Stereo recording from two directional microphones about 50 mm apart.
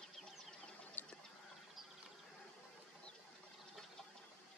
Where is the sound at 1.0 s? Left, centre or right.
Left.